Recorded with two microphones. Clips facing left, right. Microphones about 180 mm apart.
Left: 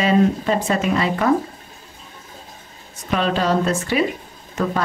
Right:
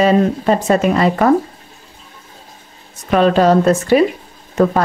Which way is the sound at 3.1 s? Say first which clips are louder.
Right 8 dB; 50° right (ahead or behind).